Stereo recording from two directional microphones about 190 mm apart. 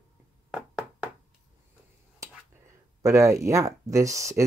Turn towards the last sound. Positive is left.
turn(degrees=-15)  # may be behind; listen again after turning